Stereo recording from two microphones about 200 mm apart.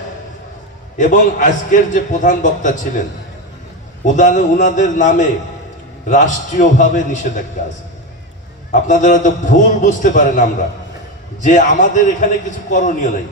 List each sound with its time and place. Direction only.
0.9 s a man's voice: 40° left (ahead or behind)
4.0 s a man's voice: 40° left (ahead or behind)
8.7 s a man's voice: 40° left (ahead or behind)